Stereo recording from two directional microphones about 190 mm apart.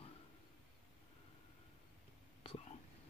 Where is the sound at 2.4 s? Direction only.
30° left (ahead or behind).